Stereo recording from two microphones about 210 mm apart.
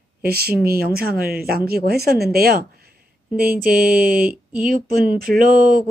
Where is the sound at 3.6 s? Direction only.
45° right (ahead or behind).